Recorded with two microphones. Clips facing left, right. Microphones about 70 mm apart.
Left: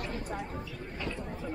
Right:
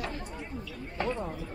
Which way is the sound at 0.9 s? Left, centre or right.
Right.